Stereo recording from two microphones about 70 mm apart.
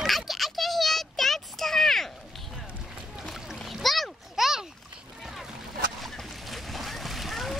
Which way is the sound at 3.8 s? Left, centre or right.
Centre.